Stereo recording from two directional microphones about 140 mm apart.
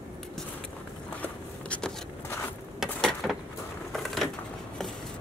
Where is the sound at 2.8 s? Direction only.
Centre (ahead or behind).